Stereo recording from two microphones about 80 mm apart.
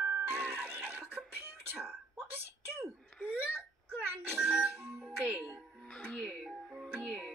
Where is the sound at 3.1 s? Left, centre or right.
Centre.